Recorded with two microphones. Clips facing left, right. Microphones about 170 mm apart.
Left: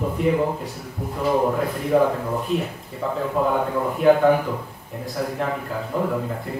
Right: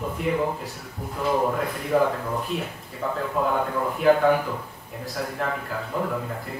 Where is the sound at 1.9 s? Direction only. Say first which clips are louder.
Left 3 dB; centre (ahead or behind).